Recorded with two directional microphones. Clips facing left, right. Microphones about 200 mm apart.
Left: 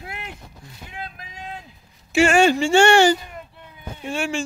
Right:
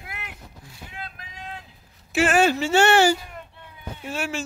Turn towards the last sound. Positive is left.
turn(degrees=-5)  # may be behind; listen again after turning